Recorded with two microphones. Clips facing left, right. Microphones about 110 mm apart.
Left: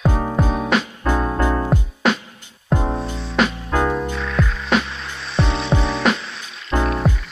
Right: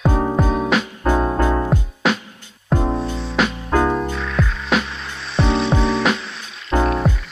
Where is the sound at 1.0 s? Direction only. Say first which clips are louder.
Right 2 dB; 20° right (ahead or behind).